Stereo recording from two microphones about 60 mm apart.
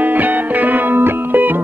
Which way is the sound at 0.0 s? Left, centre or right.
Right.